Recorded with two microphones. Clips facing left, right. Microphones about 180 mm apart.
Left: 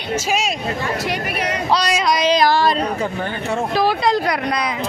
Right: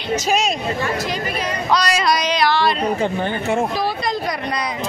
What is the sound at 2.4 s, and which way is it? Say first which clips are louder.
Speech: right 1 dB; 45° left (ahead or behind).